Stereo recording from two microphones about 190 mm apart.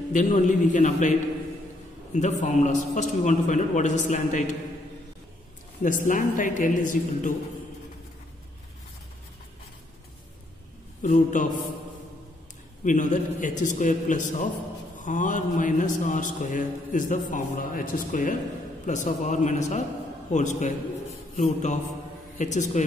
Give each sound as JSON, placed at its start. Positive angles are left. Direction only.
{"t": 0.1, "sound": "a man's voice", "side_deg": 40}
{"t": 2.1, "sound": "a man's voice", "side_deg": 40}
{"t": 5.8, "sound": "mantra", "side_deg": 45}
{"t": 11.0, "sound": "mantra", "side_deg": 40}
{"t": 12.8, "sound": "a man's voice", "side_deg": 40}
{"t": 15.0, "sound": "mantra", "side_deg": 40}
{"t": 18.9, "sound": "a man's voice", "side_deg": 40}